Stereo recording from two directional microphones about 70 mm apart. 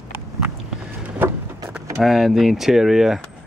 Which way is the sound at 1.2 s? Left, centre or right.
Right.